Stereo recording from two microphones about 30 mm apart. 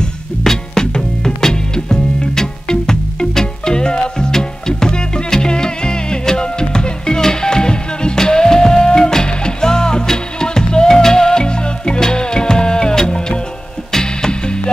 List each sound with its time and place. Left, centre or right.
0.4 s music: centre
11.4 s music: left